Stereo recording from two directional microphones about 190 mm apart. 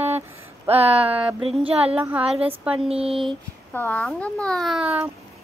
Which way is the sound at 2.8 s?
30° right (ahead or behind).